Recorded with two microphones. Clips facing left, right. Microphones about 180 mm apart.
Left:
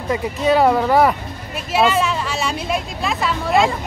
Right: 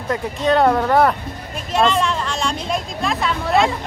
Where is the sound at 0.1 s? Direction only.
5° left (ahead or behind).